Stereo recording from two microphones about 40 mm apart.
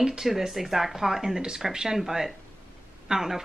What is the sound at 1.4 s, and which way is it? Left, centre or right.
A woman's voice, centre.